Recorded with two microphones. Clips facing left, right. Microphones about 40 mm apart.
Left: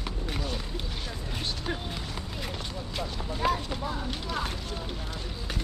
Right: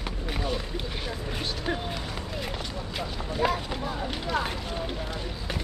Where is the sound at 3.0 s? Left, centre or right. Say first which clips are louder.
Right 3 dB; centre.